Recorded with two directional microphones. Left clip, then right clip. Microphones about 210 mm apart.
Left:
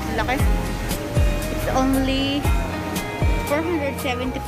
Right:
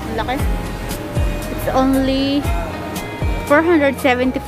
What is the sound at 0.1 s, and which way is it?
Speech, 5° right (ahead or behind).